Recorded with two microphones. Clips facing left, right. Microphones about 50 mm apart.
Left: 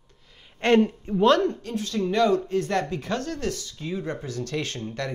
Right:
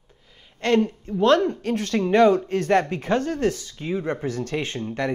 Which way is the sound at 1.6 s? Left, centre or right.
Right.